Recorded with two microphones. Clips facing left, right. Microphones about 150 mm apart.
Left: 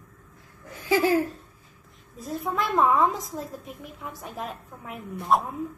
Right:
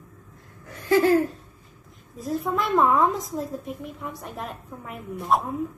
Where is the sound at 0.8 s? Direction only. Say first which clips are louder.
Right 3 dB; 5° left (ahead or behind).